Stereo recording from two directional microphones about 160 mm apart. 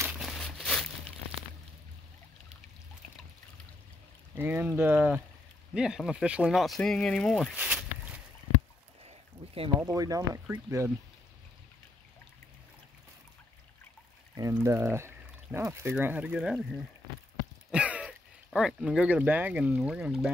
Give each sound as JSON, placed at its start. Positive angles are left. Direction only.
{"t": 0.2, "sound": "a sound", "side_deg": 0}
{"t": 4.4, "sound": "speech", "side_deg": -10}
{"t": 7.5, "sound": "walk", "side_deg": -10}
{"t": 9.0, "sound": "a sound", "side_deg": -35}
{"t": 9.8, "sound": "speech", "side_deg": -20}
{"t": 14.5, "sound": "speech", "side_deg": -20}
{"t": 17.6, "sound": "speech", "side_deg": -5}